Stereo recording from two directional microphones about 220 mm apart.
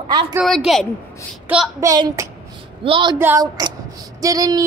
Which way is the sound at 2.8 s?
25° right (ahead or behind).